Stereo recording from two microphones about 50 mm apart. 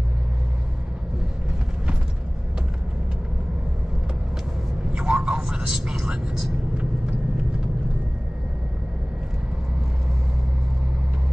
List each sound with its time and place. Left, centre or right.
4.9 s vehicle: centre